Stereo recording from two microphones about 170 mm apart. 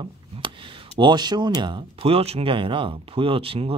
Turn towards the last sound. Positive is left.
turn(degrees=-35)  # may be behind; listen again after turning